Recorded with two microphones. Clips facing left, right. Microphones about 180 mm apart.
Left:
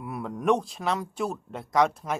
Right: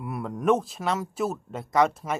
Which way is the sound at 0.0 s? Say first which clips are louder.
Right 2 dB; centre (ahead or behind).